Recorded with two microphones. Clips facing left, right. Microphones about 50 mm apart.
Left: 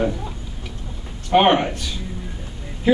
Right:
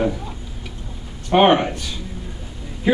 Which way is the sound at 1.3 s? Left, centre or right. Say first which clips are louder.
Right 1 dB; centre.